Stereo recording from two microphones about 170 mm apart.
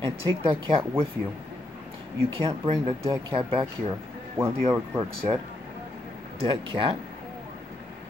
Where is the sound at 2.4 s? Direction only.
30° right (ahead or behind).